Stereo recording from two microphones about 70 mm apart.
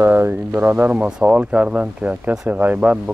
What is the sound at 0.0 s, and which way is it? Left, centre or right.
Speech, right.